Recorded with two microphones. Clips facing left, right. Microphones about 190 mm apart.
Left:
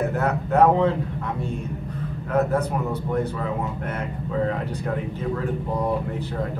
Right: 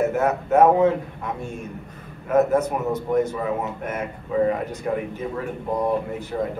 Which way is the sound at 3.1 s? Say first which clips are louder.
Right 5 dB; 15° right (ahead or behind).